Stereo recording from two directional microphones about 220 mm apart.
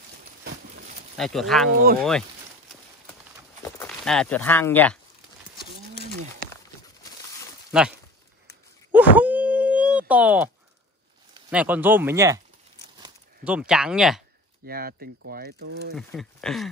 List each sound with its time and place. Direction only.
1.1 s speech: centre (ahead or behind)
3.8 s speech: 5° left (ahead or behind)
7.7 s speech: 5° right (ahead or behind)
8.9 s a sound: 5° right (ahead or behind)
11.5 s speech: 5° right (ahead or behind)
13.4 s speech: 5° right (ahead or behind)
14.7 s speech: 40° right (ahead or behind)
15.9 s speech: centre (ahead or behind)